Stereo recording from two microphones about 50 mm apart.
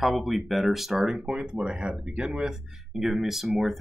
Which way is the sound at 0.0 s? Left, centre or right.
Centre.